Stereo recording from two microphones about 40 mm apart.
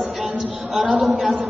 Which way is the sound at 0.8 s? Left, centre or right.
Right.